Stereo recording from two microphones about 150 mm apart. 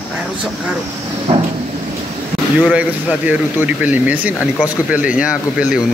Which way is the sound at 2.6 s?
10° right (ahead or behind).